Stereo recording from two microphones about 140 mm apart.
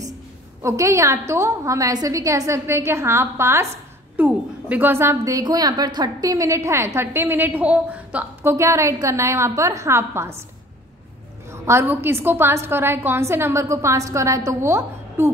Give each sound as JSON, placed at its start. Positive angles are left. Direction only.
{"t": 0.6, "sound": "a woman's voice", "side_deg": -20}
{"t": 11.6, "sound": "a woman's voice", "side_deg": -15}